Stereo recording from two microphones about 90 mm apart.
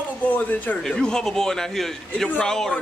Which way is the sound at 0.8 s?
5° left (ahead or behind).